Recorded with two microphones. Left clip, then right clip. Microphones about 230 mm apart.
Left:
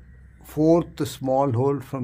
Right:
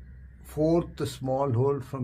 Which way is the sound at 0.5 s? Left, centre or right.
Left.